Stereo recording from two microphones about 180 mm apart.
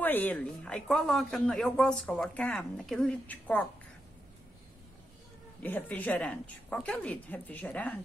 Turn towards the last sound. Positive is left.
turn(degrees=10)  # may be behind; listen again after turning